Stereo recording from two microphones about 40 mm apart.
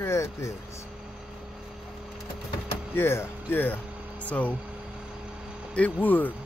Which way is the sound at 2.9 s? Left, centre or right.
Left.